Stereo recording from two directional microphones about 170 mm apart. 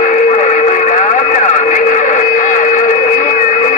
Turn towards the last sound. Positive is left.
turn(degrees=45)  # may be behind; listen again after turning